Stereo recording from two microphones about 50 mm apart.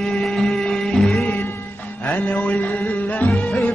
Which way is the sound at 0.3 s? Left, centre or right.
Centre.